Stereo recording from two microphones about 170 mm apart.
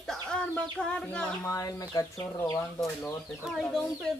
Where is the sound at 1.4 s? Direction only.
20° left (ahead or behind).